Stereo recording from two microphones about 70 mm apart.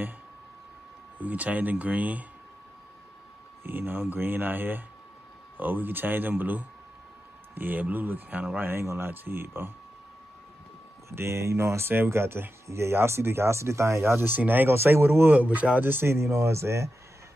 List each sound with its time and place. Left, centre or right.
1.1 s speech: right
3.6 s speech: right
11.1 s speech: right